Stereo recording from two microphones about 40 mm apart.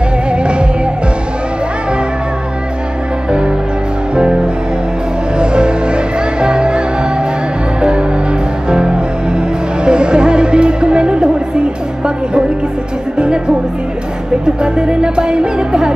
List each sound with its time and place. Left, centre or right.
0.3 s music: right
3.3 s music: right
5.4 s music: right
8.6 s music: right
14.6 s music: right